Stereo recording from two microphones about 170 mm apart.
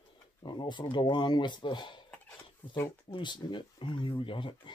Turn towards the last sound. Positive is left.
turn(degrees=30)  # may be behind; listen again after turning